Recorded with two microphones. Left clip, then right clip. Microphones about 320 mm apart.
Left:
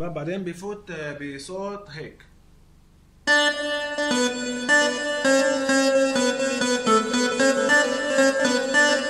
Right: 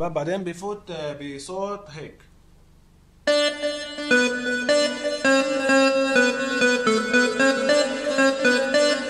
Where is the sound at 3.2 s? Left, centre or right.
Centre.